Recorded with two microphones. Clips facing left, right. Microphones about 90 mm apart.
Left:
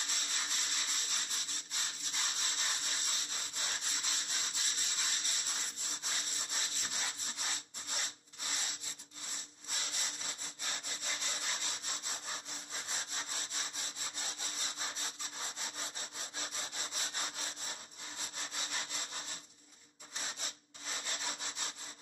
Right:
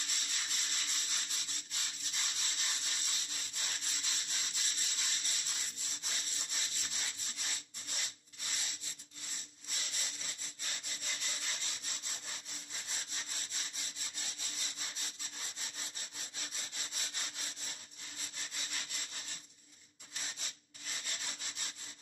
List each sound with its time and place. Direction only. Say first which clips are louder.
0.0 s rub: left 3 dB; 35° left (ahead or behind)
9.7 s sawing: left 3 dB; 35° left (ahead or behind)